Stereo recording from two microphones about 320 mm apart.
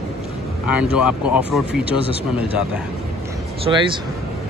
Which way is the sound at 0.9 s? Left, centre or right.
Left.